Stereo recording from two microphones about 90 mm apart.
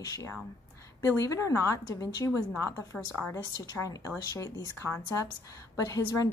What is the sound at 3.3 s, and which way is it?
Speech, 35° left (ahead or behind).